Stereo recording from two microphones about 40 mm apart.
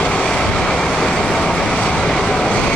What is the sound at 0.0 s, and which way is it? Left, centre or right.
Vehicle, left.